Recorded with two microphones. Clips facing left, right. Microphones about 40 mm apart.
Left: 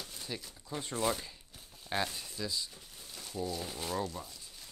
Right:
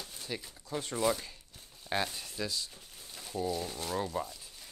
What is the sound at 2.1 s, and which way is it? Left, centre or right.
Speech, centre.